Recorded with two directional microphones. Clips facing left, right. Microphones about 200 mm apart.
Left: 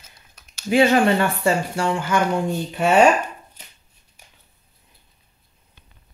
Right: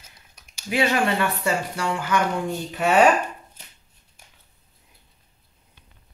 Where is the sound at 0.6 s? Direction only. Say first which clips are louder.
Left 6 dB; 30° left (ahead or behind).